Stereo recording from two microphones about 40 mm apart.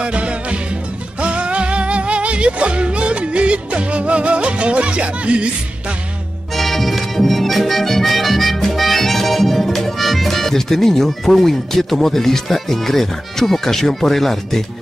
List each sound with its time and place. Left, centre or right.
0.0 s music: right
6.5 s accordion: centre